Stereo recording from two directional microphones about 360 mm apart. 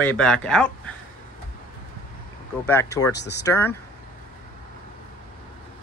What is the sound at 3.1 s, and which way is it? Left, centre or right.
Speech, left.